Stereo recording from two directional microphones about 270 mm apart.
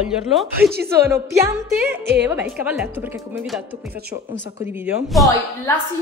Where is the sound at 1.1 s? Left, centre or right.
Centre.